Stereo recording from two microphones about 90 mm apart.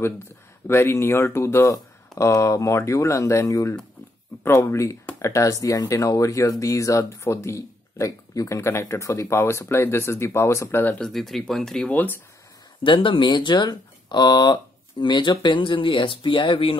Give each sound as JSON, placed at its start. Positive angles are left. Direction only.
{"t": 0.7, "sound": "speech", "side_deg": 30}
{"t": 11.0, "sound": "speech", "side_deg": 5}
{"t": 11.9, "sound": "speech", "side_deg": 20}
{"t": 12.8, "sound": "speech", "side_deg": 70}